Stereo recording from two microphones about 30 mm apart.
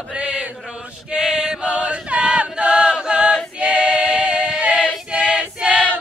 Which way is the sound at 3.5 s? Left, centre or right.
Right.